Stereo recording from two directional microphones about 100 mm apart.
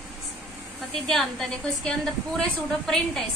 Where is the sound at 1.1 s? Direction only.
5° left (ahead or behind).